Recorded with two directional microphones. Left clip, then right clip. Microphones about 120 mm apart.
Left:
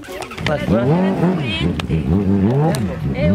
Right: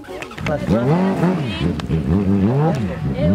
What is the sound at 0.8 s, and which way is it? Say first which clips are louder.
Speech: left 1 dB; 55° right (ahead or behind).